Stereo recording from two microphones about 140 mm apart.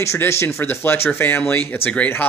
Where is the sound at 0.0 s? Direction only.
20° left (ahead or behind).